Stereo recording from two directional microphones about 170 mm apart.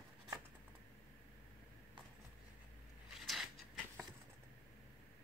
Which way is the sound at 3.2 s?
Centre (ahead or behind).